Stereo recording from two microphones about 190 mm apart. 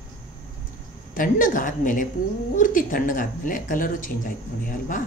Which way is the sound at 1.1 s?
45° left (ahead or behind).